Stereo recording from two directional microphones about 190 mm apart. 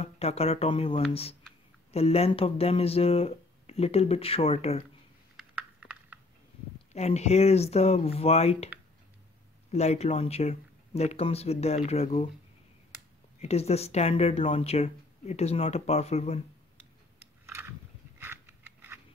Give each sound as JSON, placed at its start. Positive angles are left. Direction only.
{"t": 0.0, "sound": "speech", "side_deg": 35}
{"t": 5.8, "sound": "a sound", "side_deg": -10}
{"t": 6.9, "sound": "speech", "side_deg": 35}
{"t": 9.7, "sound": "speech", "side_deg": 35}
{"t": 13.4, "sound": "speech", "side_deg": 35}
{"t": 17.5, "sound": "a sound", "side_deg": -10}